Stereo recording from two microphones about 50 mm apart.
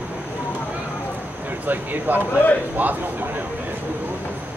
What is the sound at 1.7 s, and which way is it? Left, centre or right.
Speech, right.